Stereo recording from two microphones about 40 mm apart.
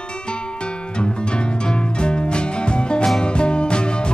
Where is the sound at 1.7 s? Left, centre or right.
Left.